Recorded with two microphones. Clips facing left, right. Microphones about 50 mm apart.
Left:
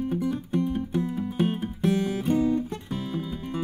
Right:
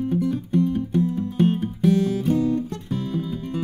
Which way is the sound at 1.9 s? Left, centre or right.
Centre.